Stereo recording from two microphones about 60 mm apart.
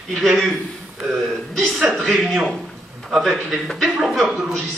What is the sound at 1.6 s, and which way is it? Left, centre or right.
A man's voice, centre.